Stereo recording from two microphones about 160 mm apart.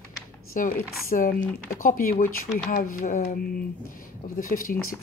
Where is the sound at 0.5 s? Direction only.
55° left (ahead or behind).